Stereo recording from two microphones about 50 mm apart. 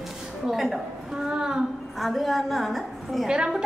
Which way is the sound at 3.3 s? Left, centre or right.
Centre.